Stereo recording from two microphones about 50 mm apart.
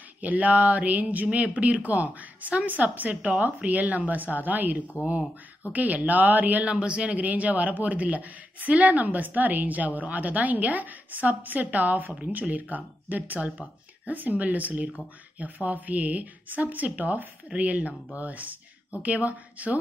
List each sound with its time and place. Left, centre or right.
0.2 s a man's voice: right
6.7 s a man's voice: right